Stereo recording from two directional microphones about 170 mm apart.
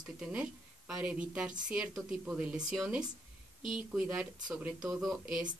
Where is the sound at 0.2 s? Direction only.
5° right (ahead or behind).